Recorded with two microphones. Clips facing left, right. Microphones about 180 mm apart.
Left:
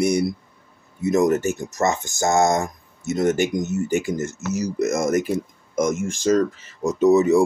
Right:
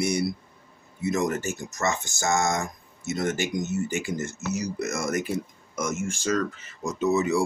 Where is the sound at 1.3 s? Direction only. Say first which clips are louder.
Left 8 dB; 55° left (ahead or behind).